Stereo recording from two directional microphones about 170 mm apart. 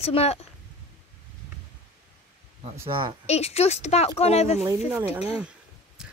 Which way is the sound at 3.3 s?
40° left (ahead or behind).